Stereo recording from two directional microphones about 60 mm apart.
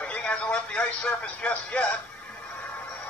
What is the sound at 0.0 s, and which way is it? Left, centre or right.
Speech, left.